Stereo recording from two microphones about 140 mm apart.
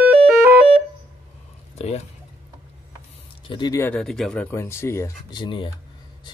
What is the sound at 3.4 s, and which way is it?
Speech, 35° left (ahead or behind).